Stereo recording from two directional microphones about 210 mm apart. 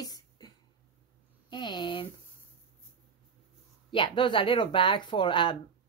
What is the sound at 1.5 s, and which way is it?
Speech, 20° left (ahead or behind).